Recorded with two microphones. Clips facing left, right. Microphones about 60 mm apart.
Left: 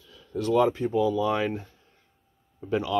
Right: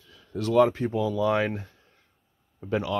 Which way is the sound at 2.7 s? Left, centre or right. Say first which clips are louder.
Even; right.